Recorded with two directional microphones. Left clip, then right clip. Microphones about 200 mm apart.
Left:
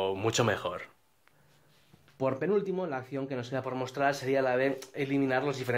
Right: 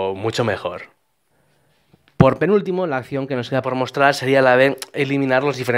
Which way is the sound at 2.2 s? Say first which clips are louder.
Right 13 dB; 50° right (ahead or behind).